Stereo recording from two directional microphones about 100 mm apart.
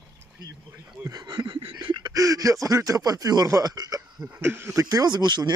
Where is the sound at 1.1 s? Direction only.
40° right (ahead or behind).